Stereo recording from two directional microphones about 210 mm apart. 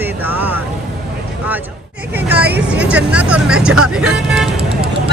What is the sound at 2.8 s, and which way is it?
Speech, 5° right (ahead or behind).